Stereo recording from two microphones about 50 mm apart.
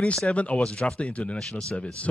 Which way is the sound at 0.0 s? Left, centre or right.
Left.